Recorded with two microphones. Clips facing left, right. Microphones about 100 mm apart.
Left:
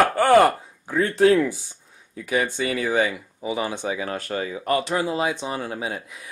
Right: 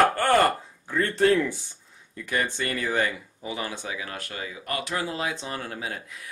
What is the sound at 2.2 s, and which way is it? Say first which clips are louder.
Speech: left 4 dB; 10° left (ahead or behind).